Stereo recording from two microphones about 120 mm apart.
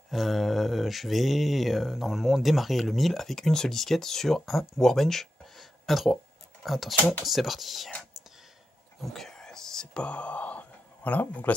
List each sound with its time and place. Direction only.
0.1 s speech: centre (ahead or behind)
7.9 s whispering: 5° left (ahead or behind)